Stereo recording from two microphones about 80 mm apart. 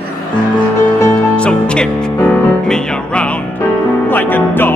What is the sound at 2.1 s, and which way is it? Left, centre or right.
Music, left.